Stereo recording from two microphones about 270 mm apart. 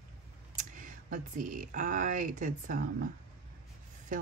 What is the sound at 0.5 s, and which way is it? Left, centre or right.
Speech, right.